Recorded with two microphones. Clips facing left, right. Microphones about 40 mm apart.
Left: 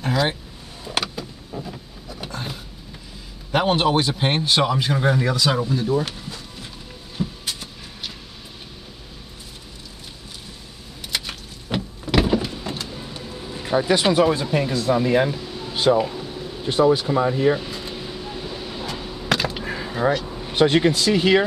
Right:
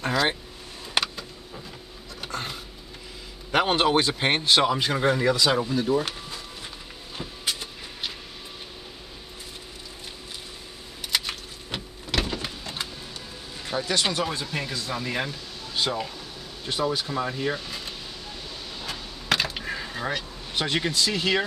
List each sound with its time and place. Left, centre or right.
0.0 s speech: centre
0.9 s vehicle: centre
2.0 s a sound: centre
3.5 s a man's voice: centre
7.2 s vehicle: centre
11.1 s power windows: centre
13.1 s speech: left
16.0 s boiling: centre
17.3 s speech: centre
18.0 s vehicle: centre
19.2 s a sound: centre
19.6 s a sound: centre
20.4 s speech: centre